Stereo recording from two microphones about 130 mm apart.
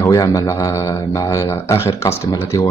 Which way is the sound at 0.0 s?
25° left (ahead or behind).